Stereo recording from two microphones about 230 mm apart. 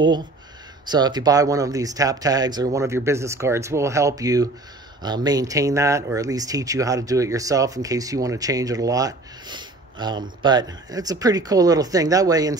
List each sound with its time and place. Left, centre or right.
0.8 s speech: centre